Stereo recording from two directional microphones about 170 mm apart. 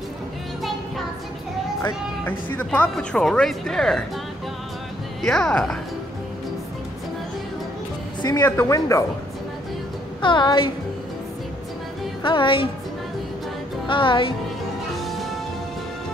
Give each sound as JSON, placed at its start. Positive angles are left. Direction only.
{"t": 1.8, "sound": "speech", "side_deg": 15}
{"t": 5.2, "sound": "speech", "side_deg": 5}
{"t": 8.2, "sound": "speech", "side_deg": 20}
{"t": 10.2, "sound": "a woman's voice", "side_deg": 30}
{"t": 12.2, "sound": "a woman's voice", "side_deg": 30}
{"t": 13.8, "sound": "a woman's voice", "side_deg": 30}
{"t": 15.0, "sound": "music", "side_deg": 0}